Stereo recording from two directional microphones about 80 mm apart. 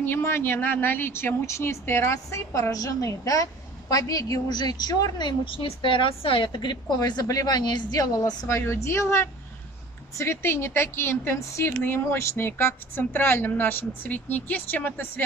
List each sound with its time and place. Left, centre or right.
0.0 s a woman's voice: left
5.4 s a woman's voice: left